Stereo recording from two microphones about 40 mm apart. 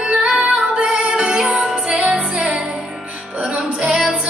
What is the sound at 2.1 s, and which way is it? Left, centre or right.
Music, centre.